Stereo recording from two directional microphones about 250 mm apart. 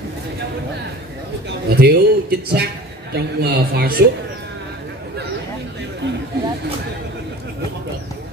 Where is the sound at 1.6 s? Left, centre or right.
Right.